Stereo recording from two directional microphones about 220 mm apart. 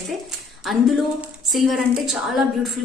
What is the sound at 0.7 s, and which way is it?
A woman's voice, centre (ahead or behind).